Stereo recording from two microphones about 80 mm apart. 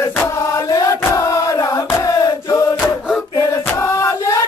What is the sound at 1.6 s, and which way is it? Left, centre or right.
Chant, left.